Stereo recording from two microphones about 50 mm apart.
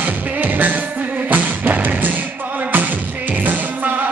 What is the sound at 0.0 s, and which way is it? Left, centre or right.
Music, right.